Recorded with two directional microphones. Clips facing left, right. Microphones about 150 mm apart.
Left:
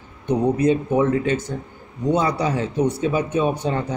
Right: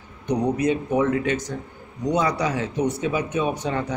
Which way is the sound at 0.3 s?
30° left (ahead or behind).